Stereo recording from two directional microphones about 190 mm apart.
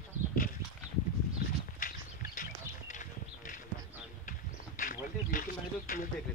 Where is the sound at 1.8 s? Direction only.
45° left (ahead or behind).